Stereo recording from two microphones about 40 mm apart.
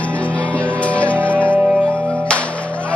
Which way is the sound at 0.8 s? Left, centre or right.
Left.